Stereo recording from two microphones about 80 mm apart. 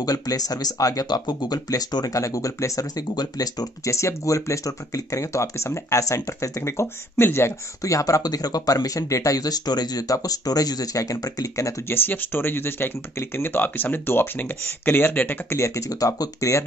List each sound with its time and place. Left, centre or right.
0.0 s speech: left
2.1 s speech: left
3.8 s speech: left
7.8 s speech: left
11.9 s speech: left
15.6 s speech: left